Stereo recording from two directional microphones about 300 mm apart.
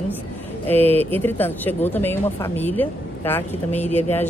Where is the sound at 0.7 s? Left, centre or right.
Centre.